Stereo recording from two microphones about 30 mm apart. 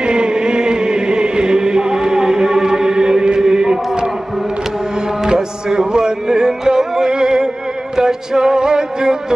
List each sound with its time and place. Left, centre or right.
0.0 s chant: right
5.2 s music: right